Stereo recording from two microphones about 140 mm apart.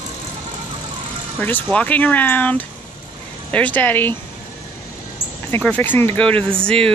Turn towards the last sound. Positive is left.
turn(degrees=5)  # may be behind; listen again after turning